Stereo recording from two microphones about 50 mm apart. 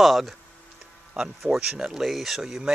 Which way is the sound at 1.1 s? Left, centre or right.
Centre.